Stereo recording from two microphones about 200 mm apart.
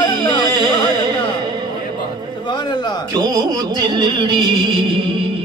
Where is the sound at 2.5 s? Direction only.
20° left (ahead or behind).